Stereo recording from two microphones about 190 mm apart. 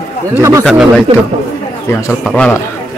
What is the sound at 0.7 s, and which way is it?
Speech, 5° left (ahead or behind).